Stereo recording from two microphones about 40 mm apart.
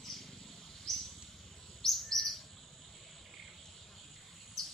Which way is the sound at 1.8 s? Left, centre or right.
Centre.